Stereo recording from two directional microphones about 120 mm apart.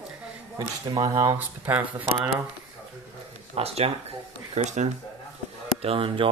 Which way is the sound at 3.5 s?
55° right (ahead or behind).